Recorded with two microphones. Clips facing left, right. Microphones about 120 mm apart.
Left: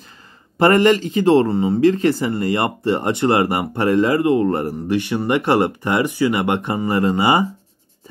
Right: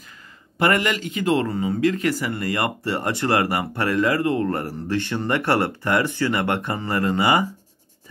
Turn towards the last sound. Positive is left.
turn(degrees=20)  # may be behind; listen again after turning